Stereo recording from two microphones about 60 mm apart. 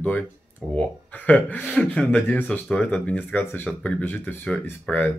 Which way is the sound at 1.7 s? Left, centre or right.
Centre.